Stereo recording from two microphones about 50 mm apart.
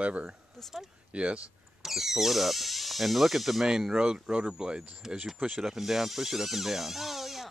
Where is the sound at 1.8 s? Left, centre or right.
Centre.